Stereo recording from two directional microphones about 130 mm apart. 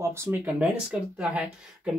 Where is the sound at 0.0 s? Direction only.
20° right (ahead or behind).